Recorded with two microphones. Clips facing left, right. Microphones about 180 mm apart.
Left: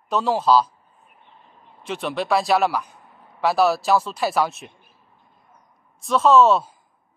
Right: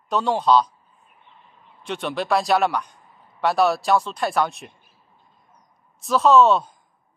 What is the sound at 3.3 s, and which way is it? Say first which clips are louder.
Speech: left 1 dB; centre (ahead or behind).